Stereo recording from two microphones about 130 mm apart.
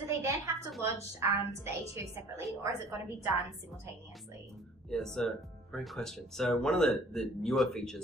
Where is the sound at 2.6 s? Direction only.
20° right (ahead or behind).